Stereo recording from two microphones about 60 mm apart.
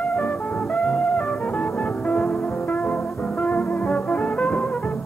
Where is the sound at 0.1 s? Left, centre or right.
Centre.